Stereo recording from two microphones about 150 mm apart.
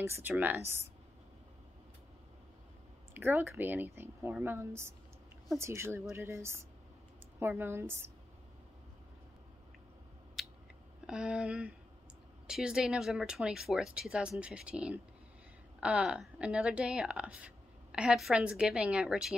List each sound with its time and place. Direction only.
0.0 s speech: 15° right (ahead or behind)
3.2 s speech: 15° right (ahead or behind)
10.4 s scissors: centre (ahead or behind)
11.1 s speech: 5° right (ahead or behind)